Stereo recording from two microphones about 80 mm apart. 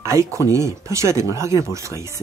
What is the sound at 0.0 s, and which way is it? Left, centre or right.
Speech, right.